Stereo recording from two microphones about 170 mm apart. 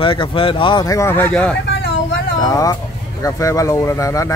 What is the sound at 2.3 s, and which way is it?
Speech, 20° left (ahead or behind).